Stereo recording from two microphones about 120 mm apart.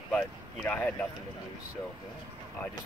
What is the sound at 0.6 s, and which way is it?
Speech, 15° left (ahead or behind).